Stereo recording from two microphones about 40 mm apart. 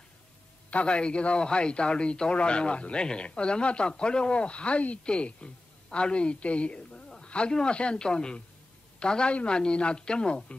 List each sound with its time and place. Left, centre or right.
0.7 s a man's voice: left